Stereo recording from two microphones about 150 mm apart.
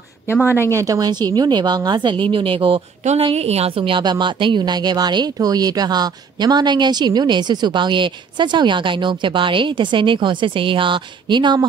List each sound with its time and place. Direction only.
0.7 s speech: 25° right (ahead or behind)
3.0 s a woman's voice: 50° right (ahead or behind); by 11.6 s 30° right (ahead or behind)